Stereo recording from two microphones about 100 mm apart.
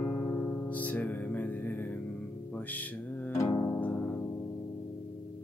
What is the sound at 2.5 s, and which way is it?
Music, 15° left (ahead or behind).